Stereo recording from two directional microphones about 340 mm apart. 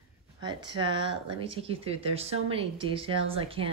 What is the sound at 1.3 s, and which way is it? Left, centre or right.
Speech, centre.